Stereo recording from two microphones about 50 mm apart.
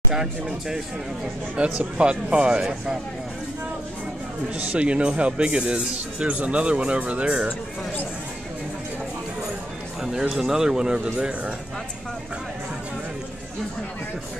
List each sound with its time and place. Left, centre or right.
1.8 s speech: right
4.6 s speech: right
10.0 s speech: centre